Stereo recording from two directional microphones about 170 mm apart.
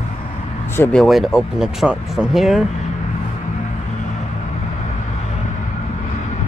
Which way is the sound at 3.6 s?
45° left (ahead or behind).